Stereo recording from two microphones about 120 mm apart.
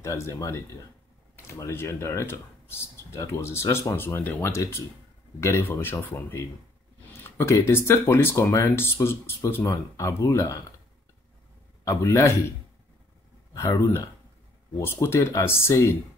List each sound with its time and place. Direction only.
0.0 s speech: 25° left (ahead or behind)
11.8 s speech: 25° left (ahead or behind)
13.6 s speech: 25° left (ahead or behind)